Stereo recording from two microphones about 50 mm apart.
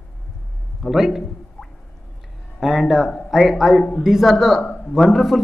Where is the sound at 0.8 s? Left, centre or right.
Centre.